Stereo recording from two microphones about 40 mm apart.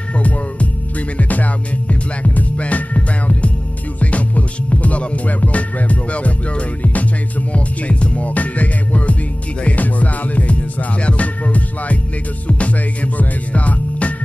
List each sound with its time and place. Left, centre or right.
1.1 s music: left